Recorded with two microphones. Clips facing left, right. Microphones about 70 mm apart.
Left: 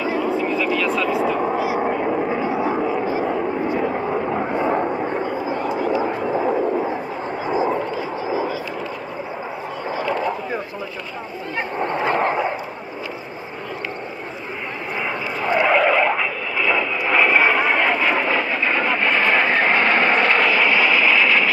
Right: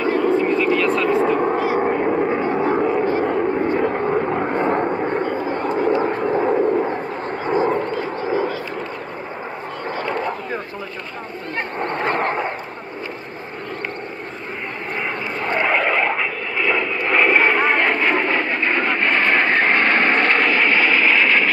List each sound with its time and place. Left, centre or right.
0.0 s vehicle: centre
1.9 s vehicle: centre
2.5 s vehicle: centre
3.2 s vehicle: right
4.1 s vehicle: centre
4.6 s vehicle: centre
5.1 s a sound: centre
7.4 s vehicle: centre
8.2 s a sound: centre
9.9 s a sound: centre
11.8 s a sound: centre
15.4 s vehicle: centre